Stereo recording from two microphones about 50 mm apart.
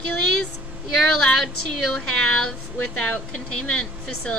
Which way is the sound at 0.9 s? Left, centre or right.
Centre.